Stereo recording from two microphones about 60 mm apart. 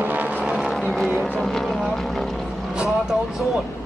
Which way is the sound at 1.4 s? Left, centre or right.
Centre.